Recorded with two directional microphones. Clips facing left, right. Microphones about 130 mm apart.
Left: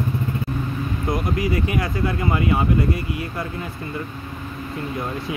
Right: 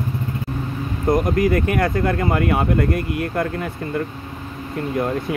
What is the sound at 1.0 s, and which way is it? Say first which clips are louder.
Speech: right 7 dB; 50° right (ahead or behind).